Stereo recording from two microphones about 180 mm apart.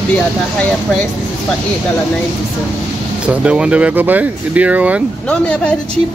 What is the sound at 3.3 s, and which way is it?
Speech, 5° right (ahead or behind).